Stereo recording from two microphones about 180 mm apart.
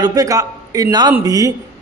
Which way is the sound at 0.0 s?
20° right (ahead or behind).